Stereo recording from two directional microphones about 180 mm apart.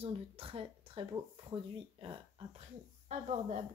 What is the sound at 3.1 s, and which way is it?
Speech, 40° right (ahead or behind).